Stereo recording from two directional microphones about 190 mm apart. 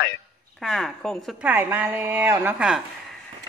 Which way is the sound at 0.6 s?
Centre (ahead or behind).